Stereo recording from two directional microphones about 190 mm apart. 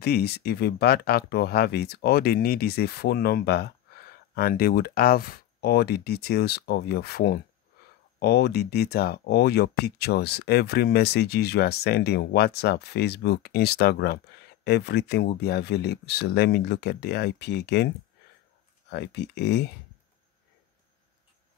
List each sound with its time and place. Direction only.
0.0 s speech: 55° left (ahead or behind)
18.9 s speech: 65° left (ahead or behind)